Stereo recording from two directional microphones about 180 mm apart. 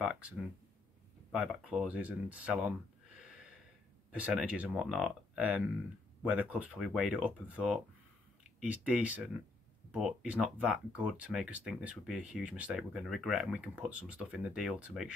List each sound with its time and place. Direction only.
0.0 s speech: 5° right (ahead or behind)
1.3 s speech: centre (ahead or behind)
4.1 s speech: 5° right (ahead or behind)